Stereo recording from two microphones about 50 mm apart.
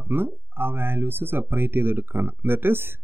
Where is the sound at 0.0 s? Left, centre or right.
Right.